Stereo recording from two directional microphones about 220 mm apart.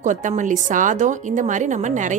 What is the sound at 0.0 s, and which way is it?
Speech, 35° right (ahead or behind).